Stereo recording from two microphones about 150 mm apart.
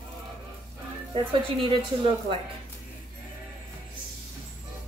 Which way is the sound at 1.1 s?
35° right (ahead or behind).